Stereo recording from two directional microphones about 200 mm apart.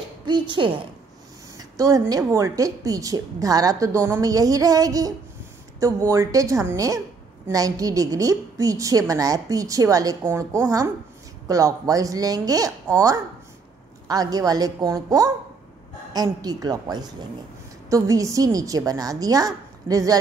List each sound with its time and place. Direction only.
0.2 s a woman's voice: 25° right (ahead or behind)